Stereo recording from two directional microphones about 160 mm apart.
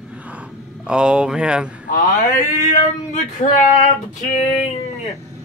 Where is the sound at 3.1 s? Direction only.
50° left (ahead or behind).